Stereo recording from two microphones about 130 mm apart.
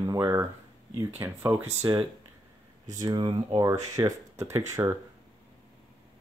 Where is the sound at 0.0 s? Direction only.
25° right (ahead or behind).